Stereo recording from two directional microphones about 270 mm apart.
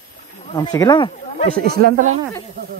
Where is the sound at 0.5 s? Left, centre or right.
Centre.